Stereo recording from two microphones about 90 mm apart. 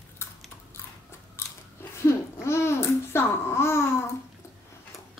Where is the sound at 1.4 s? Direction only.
30° left (ahead or behind).